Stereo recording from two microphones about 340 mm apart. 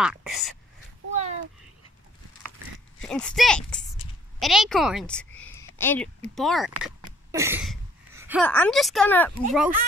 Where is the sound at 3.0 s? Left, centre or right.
Centre.